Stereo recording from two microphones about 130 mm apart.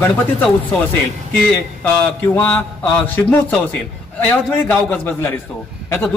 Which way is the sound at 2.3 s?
10° left (ahead or behind).